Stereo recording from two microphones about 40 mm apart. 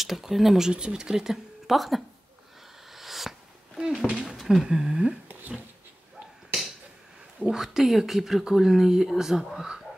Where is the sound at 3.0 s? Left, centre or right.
Centre.